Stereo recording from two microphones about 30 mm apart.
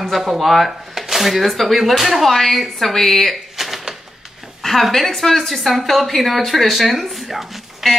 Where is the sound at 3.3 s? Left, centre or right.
Centre.